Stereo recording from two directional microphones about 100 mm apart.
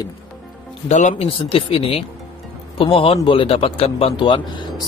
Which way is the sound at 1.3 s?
70° left (ahead or behind).